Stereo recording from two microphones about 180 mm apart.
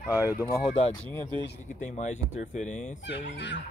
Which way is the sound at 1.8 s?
40° left (ahead or behind).